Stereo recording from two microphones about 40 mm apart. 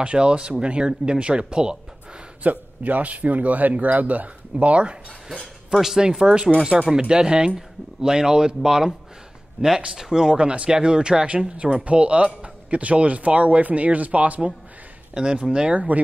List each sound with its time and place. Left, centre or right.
0.0 s speech: right
2.4 s speech: right
5.7 s speech: centre
6.0 s speech: right
9.6 s speech: right
9.9 s speech: centre; by 14.5 s right
15.4 s speech: right
15.7 s speech: right